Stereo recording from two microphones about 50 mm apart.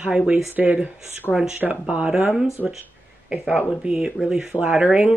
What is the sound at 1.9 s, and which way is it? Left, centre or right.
Speech, right.